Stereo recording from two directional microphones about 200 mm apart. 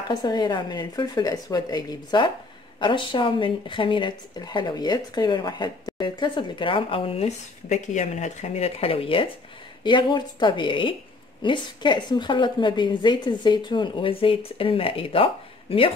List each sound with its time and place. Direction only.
0.1 s speech: 20° left (ahead or behind)